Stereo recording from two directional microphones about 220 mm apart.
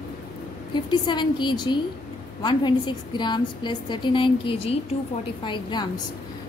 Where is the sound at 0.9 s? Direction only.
20° left (ahead or behind).